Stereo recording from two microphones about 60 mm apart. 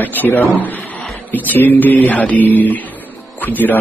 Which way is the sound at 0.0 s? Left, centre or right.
Left.